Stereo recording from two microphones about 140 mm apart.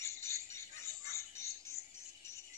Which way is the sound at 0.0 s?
20° left (ahead or behind).